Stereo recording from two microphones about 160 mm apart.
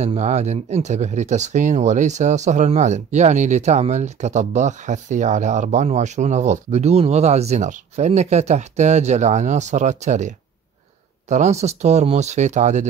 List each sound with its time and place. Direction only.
0.0 s speech: 45° right (ahead or behind)